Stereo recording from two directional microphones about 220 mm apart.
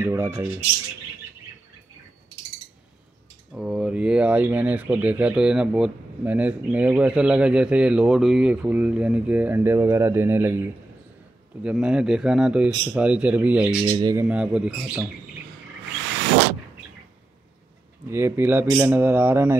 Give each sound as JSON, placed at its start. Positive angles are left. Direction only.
{"t": 0.0, "sound": "speech", "side_deg": -10}
{"t": 3.5, "sound": "speech", "side_deg": -5}
{"t": 11.6, "sound": "speech", "side_deg": -5}
{"t": 13.8, "sound": "speech", "side_deg": -15}
{"t": 14.2, "sound": "speech", "side_deg": -5}
{"t": 18.0, "sound": "speech", "side_deg": -10}